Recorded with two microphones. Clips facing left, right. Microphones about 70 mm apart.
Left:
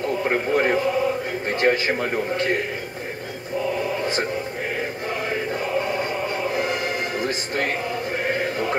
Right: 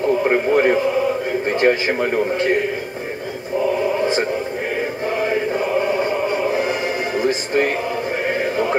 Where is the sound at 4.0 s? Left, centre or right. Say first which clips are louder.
Right 6 dB; right.